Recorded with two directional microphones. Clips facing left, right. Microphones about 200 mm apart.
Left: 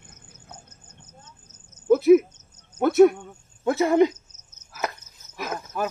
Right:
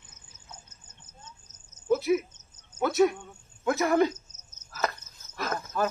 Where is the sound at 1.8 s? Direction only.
55° left (ahead or behind).